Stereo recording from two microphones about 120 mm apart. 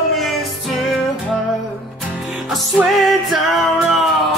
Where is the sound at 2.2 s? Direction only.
5° right (ahead or behind).